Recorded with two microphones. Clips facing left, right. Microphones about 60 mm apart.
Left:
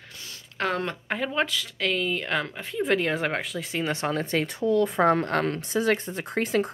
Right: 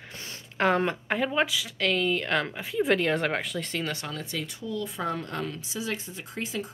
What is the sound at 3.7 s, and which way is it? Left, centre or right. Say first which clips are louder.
Speech: left 5 dB; centre.